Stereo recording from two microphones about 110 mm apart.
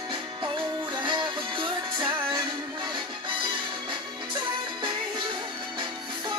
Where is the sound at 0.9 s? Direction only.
45° right (ahead or behind).